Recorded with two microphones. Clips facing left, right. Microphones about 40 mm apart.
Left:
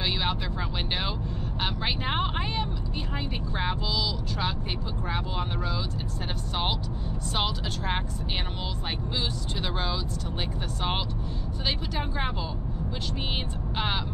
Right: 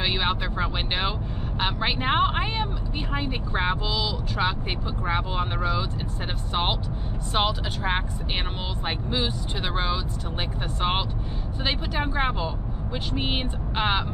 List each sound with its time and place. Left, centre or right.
0.0 s vehicle: right
5.0 s speech: right
7.3 s speech: right